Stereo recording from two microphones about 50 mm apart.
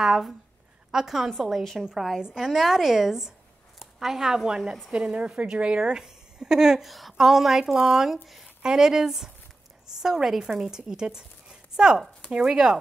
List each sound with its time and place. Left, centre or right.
0.0 s a woman's voice: centre